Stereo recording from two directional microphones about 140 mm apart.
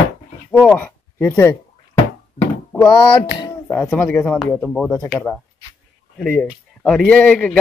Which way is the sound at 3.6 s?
15° left (ahead or behind).